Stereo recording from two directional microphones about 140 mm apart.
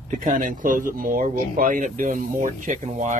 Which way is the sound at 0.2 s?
70° right (ahead or behind).